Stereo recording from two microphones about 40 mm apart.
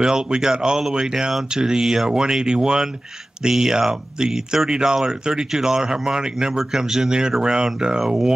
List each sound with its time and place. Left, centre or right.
0.0 s speech: centre